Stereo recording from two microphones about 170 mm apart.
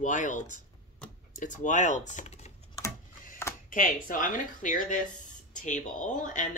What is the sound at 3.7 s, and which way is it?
Speech, 50° left (ahead or behind).